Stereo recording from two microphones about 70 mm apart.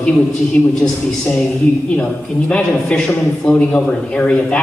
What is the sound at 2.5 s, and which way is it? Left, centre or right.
A man's voice, centre.